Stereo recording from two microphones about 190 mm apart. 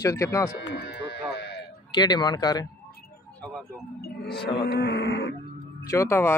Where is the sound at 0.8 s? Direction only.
60° left (ahead or behind).